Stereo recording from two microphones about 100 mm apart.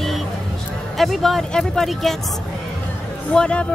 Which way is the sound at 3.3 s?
10° left (ahead or behind).